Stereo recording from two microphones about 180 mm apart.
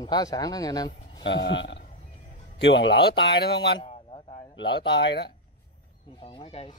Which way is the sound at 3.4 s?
60° left (ahead or behind).